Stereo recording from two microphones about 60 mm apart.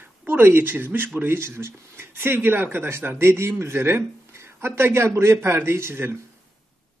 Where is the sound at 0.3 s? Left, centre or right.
Right.